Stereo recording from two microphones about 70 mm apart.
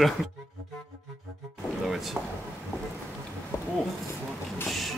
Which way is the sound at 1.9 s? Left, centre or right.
Centre.